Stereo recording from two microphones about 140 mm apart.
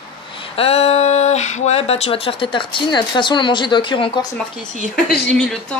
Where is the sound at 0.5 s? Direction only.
45° left (ahead or behind).